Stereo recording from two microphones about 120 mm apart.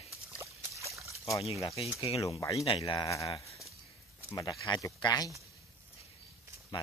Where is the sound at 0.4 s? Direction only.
25° right (ahead or behind).